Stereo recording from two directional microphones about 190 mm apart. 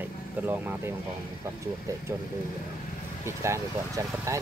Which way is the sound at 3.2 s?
15° right (ahead or behind).